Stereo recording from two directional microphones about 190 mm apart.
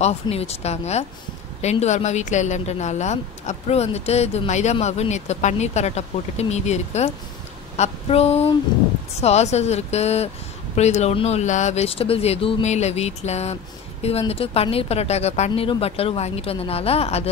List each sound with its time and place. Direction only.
0.0 s a woman's voice: 30° left (ahead or behind)
7.7 s a sound: 35° left (ahead or behind)
9.1 s a woman's voice: 35° left (ahead or behind)